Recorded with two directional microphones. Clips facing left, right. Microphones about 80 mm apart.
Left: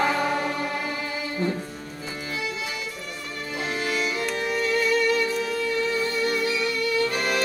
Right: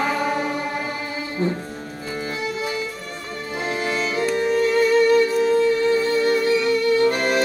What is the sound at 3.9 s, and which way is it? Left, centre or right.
Music, right.